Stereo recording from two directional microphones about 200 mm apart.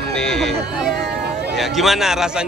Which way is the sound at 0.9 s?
55° right (ahead or behind).